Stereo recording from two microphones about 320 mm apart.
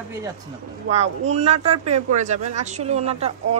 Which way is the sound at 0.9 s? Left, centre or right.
Right.